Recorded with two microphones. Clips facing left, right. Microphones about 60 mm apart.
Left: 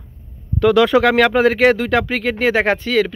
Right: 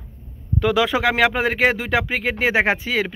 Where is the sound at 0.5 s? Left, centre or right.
Centre.